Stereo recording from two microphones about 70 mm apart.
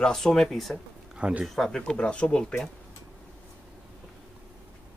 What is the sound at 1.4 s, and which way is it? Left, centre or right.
Speech, centre.